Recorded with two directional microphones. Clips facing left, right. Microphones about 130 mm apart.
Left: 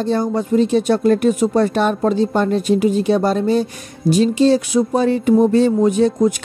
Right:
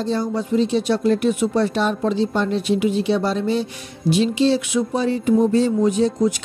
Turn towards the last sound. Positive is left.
turn(degrees=55)  # may be behind; listen again after turning